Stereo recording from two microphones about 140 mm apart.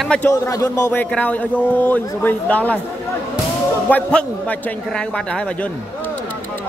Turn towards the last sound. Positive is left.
turn(degrees=5)  # may be behind; listen again after turning